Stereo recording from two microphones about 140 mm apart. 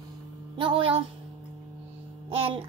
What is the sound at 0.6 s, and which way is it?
Speech, 40° right (ahead or behind).